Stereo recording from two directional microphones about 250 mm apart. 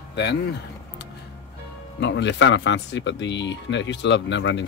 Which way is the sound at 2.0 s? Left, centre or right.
Left.